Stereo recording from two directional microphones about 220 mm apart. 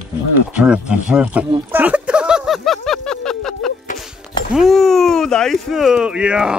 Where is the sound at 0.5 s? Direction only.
5° right (ahead or behind).